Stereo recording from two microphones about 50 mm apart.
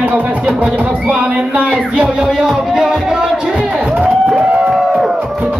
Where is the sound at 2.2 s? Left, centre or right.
Centre.